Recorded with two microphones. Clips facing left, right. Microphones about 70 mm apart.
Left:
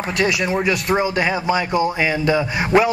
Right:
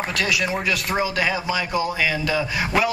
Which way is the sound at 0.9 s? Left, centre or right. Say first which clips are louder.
Left 2 dB; left.